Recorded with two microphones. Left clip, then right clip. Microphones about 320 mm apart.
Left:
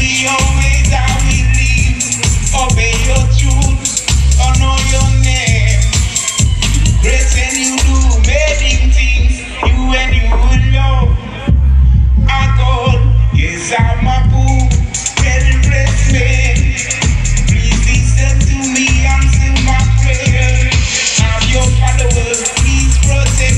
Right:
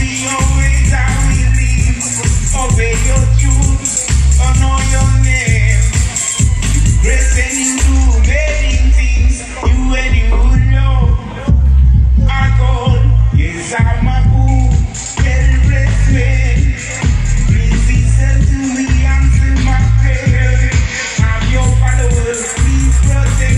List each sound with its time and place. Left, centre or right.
0.0 s music: left
12.3 s music: left
15.1 s music: left